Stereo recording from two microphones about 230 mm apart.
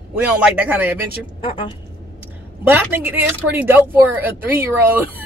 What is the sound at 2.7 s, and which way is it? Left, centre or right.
Speech, centre.